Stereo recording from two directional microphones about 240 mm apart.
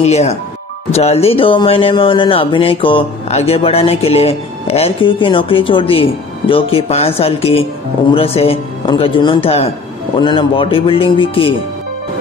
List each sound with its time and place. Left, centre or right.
0.0 s speech: left